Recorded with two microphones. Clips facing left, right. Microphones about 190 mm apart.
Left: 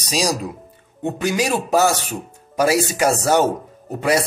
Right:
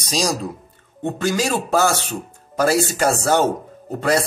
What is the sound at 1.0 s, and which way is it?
Speech, 15° left (ahead or behind).